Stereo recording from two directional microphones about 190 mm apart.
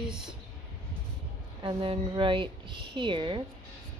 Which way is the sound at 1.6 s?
25° right (ahead or behind).